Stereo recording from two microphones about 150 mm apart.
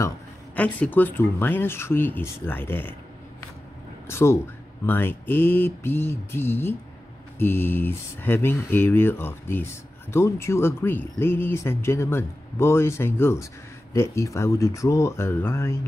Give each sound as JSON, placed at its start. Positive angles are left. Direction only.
{"t": 0.6, "sound": "speech", "side_deg": 10}
{"t": 4.1, "sound": "speech", "side_deg": 15}